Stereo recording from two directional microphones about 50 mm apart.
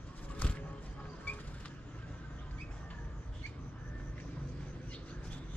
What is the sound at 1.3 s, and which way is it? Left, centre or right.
Vehicle, left.